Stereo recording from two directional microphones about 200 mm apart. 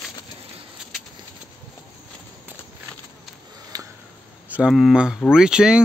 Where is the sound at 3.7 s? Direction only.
20° right (ahead or behind).